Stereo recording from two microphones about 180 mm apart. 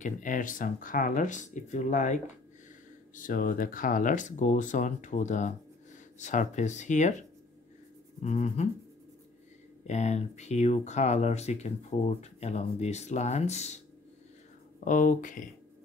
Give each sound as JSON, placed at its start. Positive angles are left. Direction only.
{"t": 0.0, "sound": "speech", "side_deg": 45}
{"t": 9.8, "sound": "speech", "side_deg": 40}
{"t": 14.9, "sound": "speech", "side_deg": 45}